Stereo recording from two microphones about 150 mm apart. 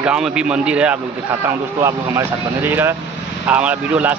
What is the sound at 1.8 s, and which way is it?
Speech, 20° right (ahead or behind).